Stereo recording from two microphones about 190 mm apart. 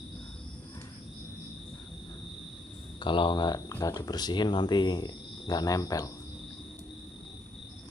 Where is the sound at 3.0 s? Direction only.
25° left (ahead or behind).